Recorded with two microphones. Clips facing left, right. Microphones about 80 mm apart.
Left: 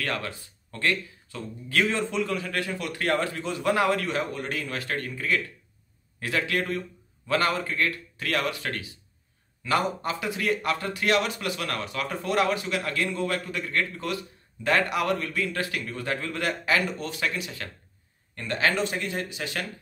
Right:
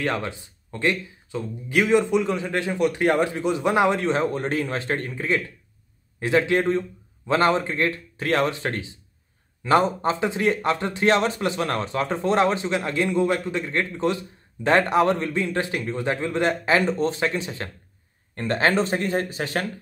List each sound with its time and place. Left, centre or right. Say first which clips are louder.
0.0 s speech: right 5 dB; right